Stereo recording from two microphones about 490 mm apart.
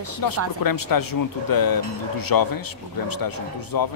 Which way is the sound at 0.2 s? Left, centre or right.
Left.